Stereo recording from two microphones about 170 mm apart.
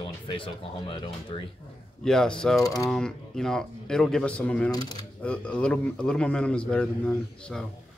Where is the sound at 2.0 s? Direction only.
5° left (ahead or behind).